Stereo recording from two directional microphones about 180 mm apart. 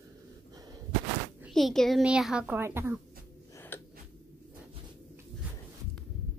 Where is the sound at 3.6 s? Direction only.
15° left (ahead or behind).